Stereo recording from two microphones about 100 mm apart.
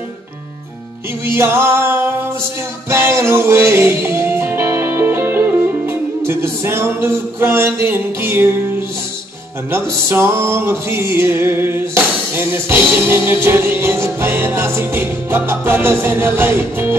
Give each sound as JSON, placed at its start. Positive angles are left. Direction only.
{"t": 1.2, "sound": "music", "side_deg": -25}
{"t": 9.7, "sound": "music", "side_deg": -25}